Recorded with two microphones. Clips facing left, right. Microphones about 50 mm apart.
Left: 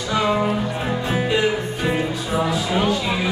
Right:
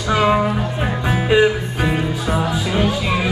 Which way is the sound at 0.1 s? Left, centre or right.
Right.